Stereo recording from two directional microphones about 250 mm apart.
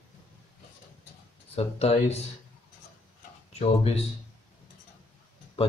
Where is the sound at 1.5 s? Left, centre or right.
Left.